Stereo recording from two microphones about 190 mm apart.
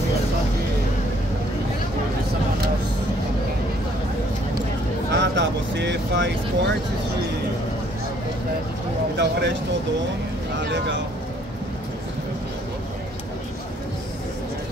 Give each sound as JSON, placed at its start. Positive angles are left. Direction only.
{"t": 5.1, "sound": "vehicle", "side_deg": -65}
{"t": 9.1, "sound": "speech", "side_deg": -65}